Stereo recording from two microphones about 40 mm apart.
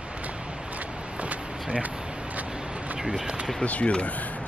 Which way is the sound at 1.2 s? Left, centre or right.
Right.